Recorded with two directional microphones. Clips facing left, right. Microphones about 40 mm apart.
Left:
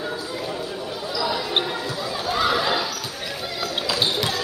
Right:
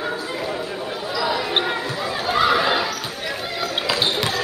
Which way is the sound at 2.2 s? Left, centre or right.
Right.